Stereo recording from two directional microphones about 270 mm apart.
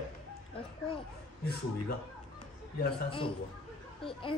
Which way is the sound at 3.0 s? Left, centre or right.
Centre.